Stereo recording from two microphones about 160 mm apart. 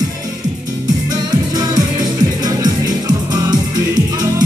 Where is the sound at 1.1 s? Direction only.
25° right (ahead or behind).